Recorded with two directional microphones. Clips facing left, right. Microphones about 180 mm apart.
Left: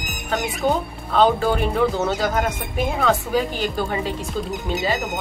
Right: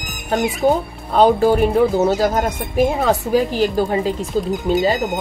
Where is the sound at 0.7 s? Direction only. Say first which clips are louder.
Right 4 dB; 40° right (ahead or behind).